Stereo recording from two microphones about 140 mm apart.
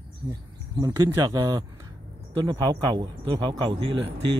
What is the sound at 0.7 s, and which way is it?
Speech, 30° right (ahead or behind).